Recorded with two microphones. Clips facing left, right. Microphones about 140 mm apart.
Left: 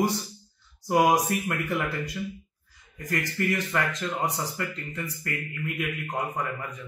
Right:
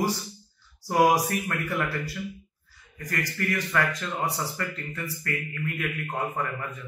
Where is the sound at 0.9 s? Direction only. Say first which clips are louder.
Even; 20° left (ahead or behind).